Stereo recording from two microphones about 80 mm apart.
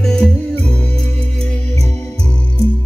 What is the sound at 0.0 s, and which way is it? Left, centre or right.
Music, centre.